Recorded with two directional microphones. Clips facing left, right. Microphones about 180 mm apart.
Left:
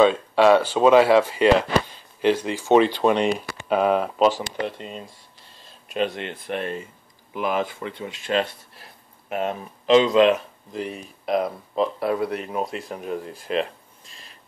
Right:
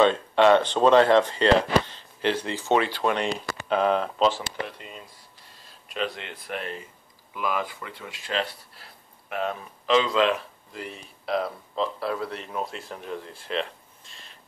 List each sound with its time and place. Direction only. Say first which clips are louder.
0.0 s speech: left 2 dB; 10° left (ahead or behind)
4.6 s speech: left 8 dB; 30° left (ahead or behind); by 14.2 s 5° left (ahead or behind)